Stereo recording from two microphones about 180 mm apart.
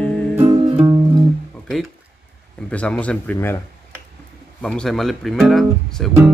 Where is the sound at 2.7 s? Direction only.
5° left (ahead or behind).